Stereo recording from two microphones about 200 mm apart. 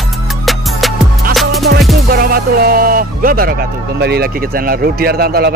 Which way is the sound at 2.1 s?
50° right (ahead or behind).